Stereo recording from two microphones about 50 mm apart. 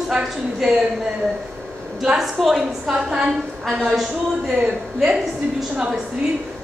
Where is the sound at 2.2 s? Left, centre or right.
Centre.